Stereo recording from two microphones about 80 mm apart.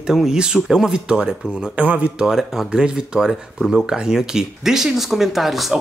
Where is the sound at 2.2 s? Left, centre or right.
Centre.